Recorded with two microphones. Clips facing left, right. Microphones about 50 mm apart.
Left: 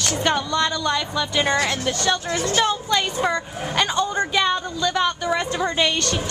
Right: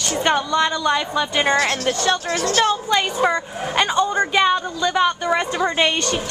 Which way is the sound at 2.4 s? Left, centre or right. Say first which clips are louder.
Right 2 dB; centre.